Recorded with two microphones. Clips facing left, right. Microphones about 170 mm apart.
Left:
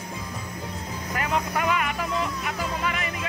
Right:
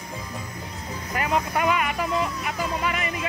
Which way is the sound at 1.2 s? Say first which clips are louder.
Right 2 dB; 15° right (ahead or behind).